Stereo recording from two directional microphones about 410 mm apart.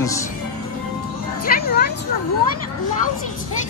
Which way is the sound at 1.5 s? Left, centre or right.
Left.